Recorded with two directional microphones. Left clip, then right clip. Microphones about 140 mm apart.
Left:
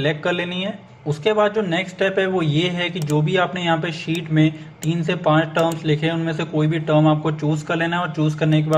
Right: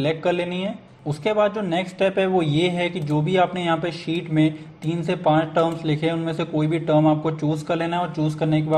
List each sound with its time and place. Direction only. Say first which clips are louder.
0.0 s a man's voice: left 1 dB; 25° right (ahead or behind)